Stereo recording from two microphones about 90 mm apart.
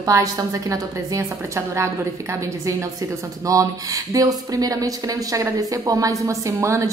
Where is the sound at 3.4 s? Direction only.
40° right (ahead or behind).